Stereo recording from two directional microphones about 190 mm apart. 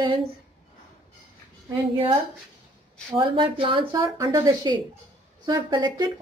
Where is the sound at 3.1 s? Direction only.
25° right (ahead or behind).